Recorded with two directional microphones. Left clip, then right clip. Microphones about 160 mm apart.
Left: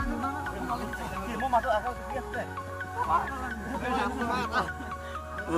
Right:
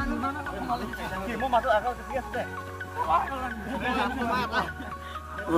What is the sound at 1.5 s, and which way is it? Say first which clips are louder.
Speech: right 3 dB; 35° right (ahead or behind).